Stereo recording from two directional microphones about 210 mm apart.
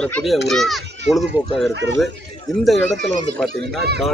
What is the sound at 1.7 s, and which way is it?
Speech, 55° right (ahead or behind).